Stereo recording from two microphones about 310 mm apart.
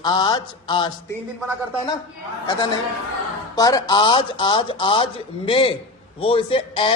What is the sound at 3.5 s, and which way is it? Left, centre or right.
Speech, centre.